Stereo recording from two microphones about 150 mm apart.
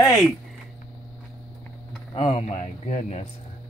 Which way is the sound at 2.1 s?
45° left (ahead or behind).